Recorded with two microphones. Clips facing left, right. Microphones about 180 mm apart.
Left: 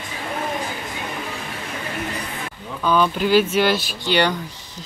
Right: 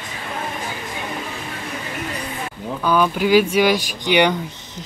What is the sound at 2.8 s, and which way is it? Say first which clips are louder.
Speech: right 1 dB; 10° right (ahead or behind).